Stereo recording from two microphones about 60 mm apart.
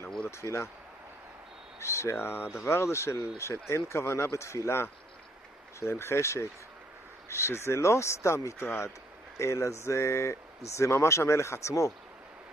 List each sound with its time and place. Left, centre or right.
0.4 s speech: left
1.8 s speech: left